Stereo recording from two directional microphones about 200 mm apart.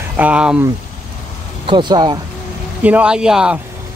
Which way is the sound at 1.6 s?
20° right (ahead or behind).